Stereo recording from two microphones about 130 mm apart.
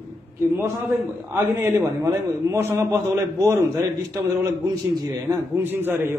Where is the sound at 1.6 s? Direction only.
25° right (ahead or behind).